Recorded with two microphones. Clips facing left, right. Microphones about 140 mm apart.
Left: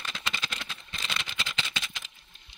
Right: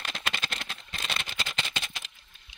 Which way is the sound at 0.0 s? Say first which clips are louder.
Right 1 dB; 55° right (ahead or behind).